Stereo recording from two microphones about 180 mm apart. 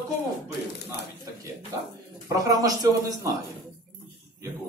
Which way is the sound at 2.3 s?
20° right (ahead or behind).